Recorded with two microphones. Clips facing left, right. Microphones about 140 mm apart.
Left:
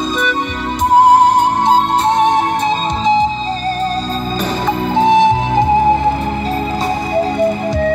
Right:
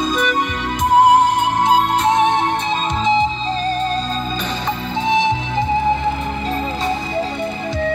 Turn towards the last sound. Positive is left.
turn(degrees=45)  # may be behind; listen again after turning